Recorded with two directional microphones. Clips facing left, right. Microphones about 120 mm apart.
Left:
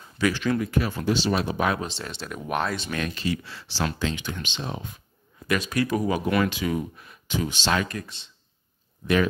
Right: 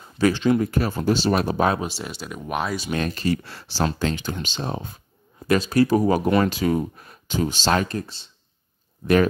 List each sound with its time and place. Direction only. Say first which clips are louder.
0.3 s speech: right 6 dB; 25° right (ahead or behind)
0.6 s speech: right 3 dB; 40° right (ahead or behind)
1.8 s speech: right 3 dB; 10° right (ahead or behind)
2.9 s speech: right 4 dB; 35° right (ahead or behind)